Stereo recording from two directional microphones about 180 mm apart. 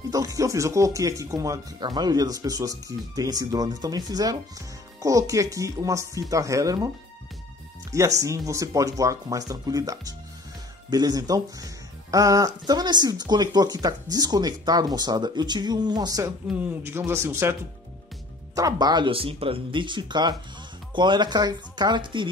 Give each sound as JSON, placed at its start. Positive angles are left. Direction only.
{"t": 0.1, "sound": "speech", "side_deg": -20}
{"t": 8.2, "sound": "speech", "side_deg": -15}